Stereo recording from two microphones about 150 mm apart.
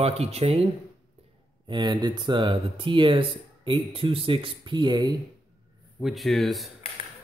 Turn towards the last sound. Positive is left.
turn(degrees=0)  # may be behind; listen again after turning